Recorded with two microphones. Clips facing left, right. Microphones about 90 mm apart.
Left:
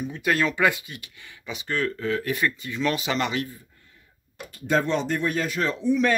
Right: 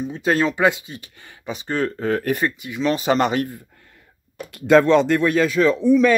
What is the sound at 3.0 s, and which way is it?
Speech, 40° right (ahead or behind).